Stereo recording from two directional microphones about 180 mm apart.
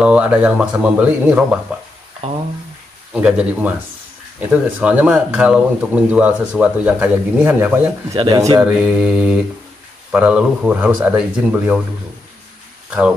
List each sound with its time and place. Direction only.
0.0 s speech: 5° right (ahead or behind)
3.1 s speech: 5° right (ahead or behind)
8.2 s speech: 20° right (ahead or behind)
8.7 s mantra: 5° right (ahead or behind)
10.1 s speech: 5° right (ahead or behind)